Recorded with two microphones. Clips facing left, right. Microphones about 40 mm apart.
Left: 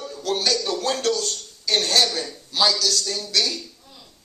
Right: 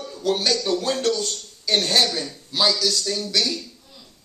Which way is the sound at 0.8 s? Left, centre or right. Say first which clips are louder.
Even; centre.